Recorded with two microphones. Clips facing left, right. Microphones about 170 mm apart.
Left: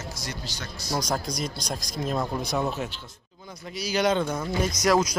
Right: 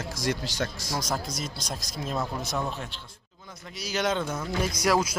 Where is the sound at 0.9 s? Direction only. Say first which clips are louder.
Left 5 dB; 5° right (ahead or behind).